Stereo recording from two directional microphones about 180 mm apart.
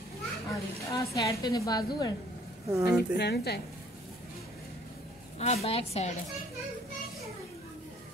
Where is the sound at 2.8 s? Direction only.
65° left (ahead or behind).